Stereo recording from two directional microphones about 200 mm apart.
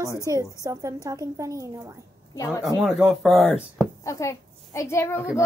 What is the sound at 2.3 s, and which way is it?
Speech, 15° left (ahead or behind).